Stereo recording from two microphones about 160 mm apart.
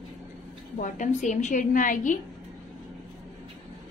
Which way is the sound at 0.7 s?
55° left (ahead or behind).